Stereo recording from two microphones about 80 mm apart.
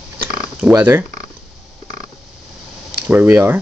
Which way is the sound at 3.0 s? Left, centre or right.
Right.